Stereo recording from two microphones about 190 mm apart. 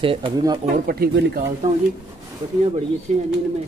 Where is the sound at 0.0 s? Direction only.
30° right (ahead or behind).